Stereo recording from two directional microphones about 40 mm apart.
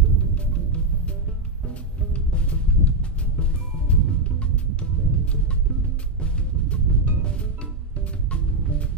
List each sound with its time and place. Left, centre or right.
0.3 s music: left
2.1 s music: left